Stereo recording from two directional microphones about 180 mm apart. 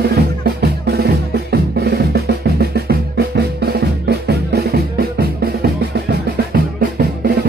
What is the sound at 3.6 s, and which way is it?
Music, 65° right (ahead or behind).